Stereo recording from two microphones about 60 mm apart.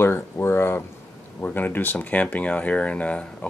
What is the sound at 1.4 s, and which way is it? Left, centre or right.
Speech, left.